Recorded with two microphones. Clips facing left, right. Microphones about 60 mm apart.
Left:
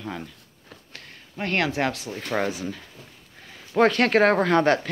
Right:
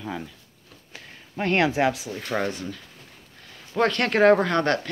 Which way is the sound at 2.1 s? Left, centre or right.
Centre.